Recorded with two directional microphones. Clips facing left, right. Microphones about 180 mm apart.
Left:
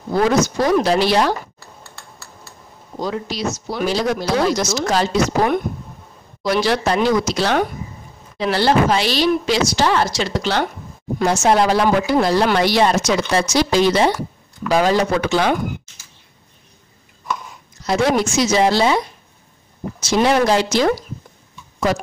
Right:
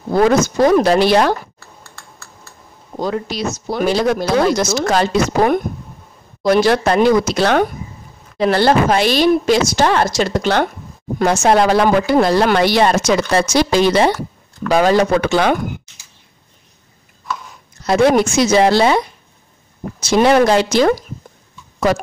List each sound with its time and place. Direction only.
0.1 s speech: 50° right (ahead or behind)
3.0 s speech: 55° right (ahead or behind)
17.8 s speech: 55° right (ahead or behind)
20.0 s speech: 55° right (ahead or behind)